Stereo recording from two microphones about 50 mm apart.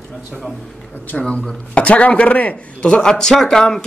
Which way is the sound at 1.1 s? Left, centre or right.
Left.